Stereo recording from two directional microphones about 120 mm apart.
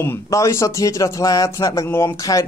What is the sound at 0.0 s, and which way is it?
Speech, 25° left (ahead or behind).